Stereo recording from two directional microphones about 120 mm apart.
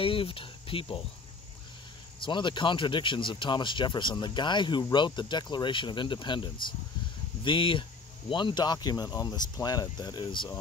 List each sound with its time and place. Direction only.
0.0 s speech: 50° left (ahead or behind)
2.1 s speech: 45° left (ahead or behind)